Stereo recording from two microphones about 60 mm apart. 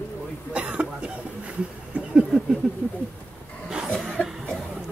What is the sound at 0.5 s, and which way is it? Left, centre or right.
Speech, centre.